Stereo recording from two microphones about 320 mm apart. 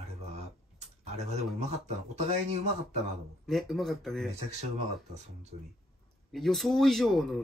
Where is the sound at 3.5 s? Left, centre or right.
Centre.